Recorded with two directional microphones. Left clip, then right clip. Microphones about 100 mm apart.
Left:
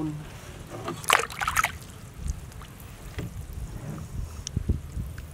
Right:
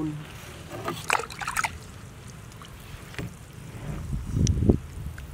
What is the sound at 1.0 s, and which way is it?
Trickle, 35° left (ahead or behind).